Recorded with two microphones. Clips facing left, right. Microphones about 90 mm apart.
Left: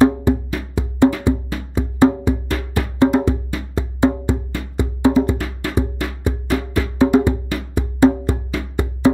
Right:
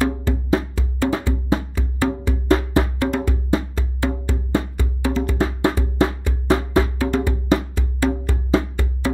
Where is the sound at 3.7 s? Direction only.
20° left (ahead or behind).